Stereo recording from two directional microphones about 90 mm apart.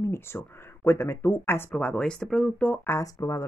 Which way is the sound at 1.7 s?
15° left (ahead or behind).